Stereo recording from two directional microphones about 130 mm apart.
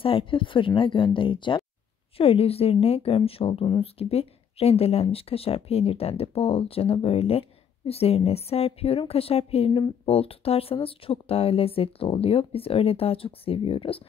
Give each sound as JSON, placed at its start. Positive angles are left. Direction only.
{"t": 0.0, "sound": "speech", "side_deg": 45}